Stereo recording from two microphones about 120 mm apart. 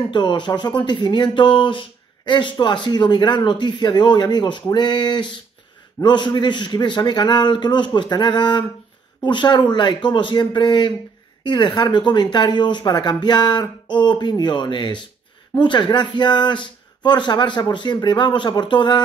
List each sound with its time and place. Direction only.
0.0 s speech: 40° left (ahead or behind)